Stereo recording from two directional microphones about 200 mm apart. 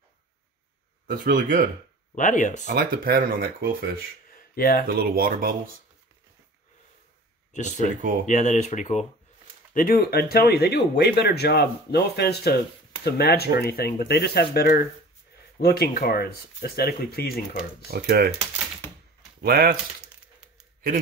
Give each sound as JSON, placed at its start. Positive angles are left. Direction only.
{"t": 1.0, "sound": "speech", "side_deg": -45}
{"t": 2.1, "sound": "speech", "side_deg": 40}
{"t": 2.6, "sound": "speech", "side_deg": -45}
{"t": 4.4, "sound": "a sound", "side_deg": 45}
{"t": 4.8, "sound": "speech", "side_deg": -50}
{"t": 7.5, "sound": "speech", "side_deg": 35}
{"t": 9.8, "sound": "speech", "side_deg": 45}
{"t": 17.9, "sound": "speech", "side_deg": -50}
{"t": 19.4, "sound": "speech", "side_deg": -50}